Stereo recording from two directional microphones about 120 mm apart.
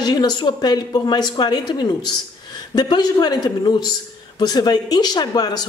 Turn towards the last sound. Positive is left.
turn(degrees=35)  # may be behind; listen again after turning